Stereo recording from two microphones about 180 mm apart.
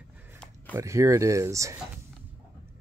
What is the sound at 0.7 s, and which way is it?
Speech, 15° right (ahead or behind).